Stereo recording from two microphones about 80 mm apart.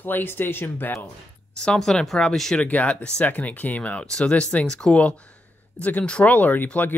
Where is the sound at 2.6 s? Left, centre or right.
Centre.